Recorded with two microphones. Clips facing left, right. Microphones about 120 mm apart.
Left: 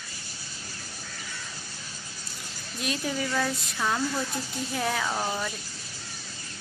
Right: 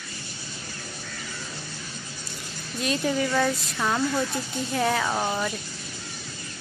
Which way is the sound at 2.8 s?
Centre (ahead or behind).